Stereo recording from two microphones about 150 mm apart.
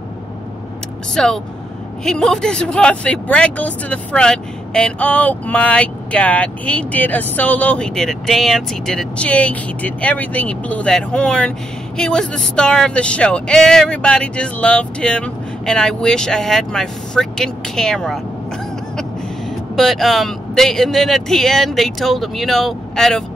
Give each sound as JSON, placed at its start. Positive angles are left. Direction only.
{"t": 1.1, "sound": "speech", "side_deg": 5}
{"t": 19.7, "sound": "speech", "side_deg": 0}